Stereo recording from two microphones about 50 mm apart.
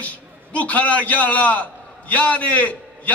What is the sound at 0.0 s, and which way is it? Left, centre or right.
A man's voice, left.